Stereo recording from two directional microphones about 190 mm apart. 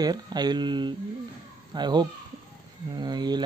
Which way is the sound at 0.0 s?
20° right (ahead or behind).